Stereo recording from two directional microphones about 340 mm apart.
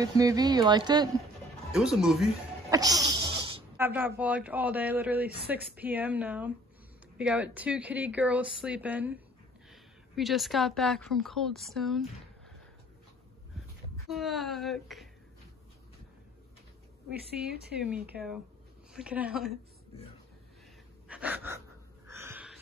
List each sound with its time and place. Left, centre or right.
0.0 s speech: centre
1.7 s music: centre
4.2 s speech: centre
14.0 s speech: centre
17.1 s a woman's voice: right
17.7 s speech: centre
21.1 s a sound: centre
22.1 s gasp: centre